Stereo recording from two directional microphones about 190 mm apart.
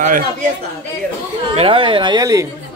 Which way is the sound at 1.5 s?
30° right (ahead or behind).